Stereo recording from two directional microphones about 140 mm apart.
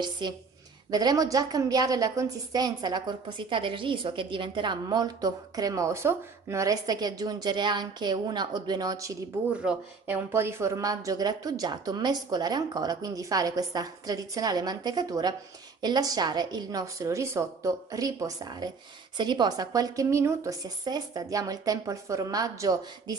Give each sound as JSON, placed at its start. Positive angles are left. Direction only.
{"t": 0.2, "sound": "a woman's voice", "side_deg": -30}
{"t": 9.5, "sound": "a woman's voice", "side_deg": -10}